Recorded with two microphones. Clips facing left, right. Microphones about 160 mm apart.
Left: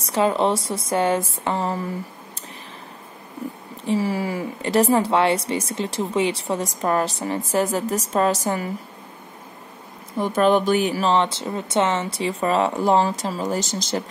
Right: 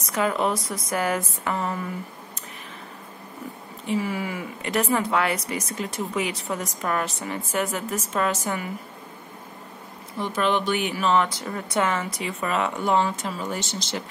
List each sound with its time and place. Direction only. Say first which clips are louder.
0.0 s speech: left 4 dB; 30° left (ahead or behind)
3.8 s speech: left 4 dB; 35° left (ahead or behind)
10.1 s speech: left 6 dB; 45° left (ahead or behind)